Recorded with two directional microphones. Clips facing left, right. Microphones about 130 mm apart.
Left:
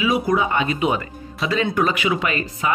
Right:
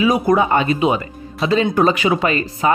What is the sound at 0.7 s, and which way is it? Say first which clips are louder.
Speech: right 4 dB; 25° right (ahead or behind).